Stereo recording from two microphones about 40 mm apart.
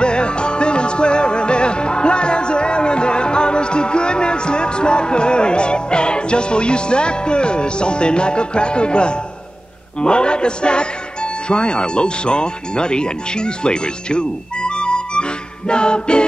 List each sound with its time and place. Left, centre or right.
0.0 s music: left
9.9 s a man's voice: left